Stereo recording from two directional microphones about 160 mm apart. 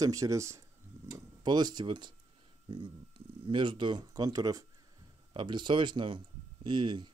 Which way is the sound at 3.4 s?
30° right (ahead or behind).